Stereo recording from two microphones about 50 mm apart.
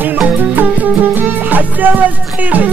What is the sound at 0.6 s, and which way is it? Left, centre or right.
Music, right.